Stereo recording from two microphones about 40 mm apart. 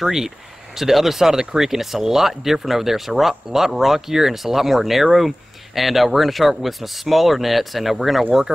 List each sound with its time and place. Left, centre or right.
0.0 s speech: centre
8.5 s speech: centre